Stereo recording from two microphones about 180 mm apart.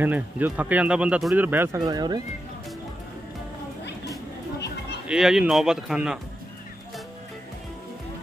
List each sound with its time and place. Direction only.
0.0 s speech: 10° right (ahead or behind)
1.8 s speech: 20° right (ahead or behind)
5.0 s speech: 5° right (ahead or behind)